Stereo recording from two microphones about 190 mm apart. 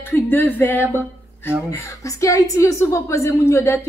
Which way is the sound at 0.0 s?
10° left (ahead or behind).